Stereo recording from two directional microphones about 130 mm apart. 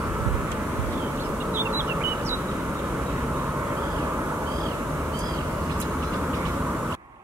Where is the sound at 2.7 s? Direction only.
10° right (ahead or behind).